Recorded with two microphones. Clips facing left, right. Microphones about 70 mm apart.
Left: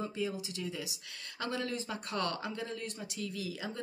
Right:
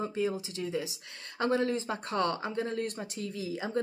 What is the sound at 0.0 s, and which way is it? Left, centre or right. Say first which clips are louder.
Speech: right 5 dB; right.